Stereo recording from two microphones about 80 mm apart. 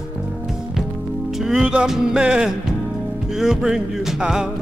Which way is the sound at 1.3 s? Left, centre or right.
Centre.